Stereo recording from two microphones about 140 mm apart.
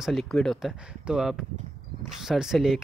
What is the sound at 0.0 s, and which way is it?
Speech, centre (ahead or behind).